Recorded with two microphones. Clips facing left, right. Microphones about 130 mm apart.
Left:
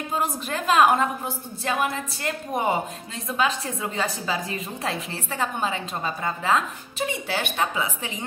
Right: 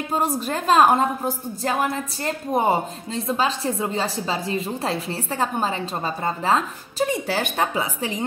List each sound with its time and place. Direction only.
0.1 s a woman's voice: 35° right (ahead or behind)